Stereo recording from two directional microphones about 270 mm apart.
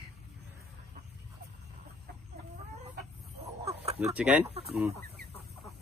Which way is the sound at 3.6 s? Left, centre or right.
Right.